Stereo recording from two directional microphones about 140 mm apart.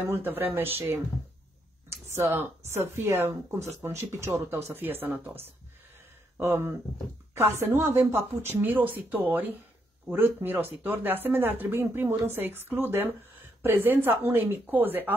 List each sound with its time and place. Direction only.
0.1 s speech: 15° right (ahead or behind)
2.0 s speech: 20° right (ahead or behind)